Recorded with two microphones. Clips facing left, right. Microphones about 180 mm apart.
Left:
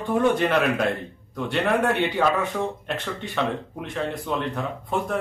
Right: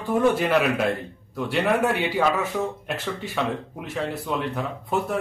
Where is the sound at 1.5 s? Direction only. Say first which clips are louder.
Even; 5° right (ahead or behind).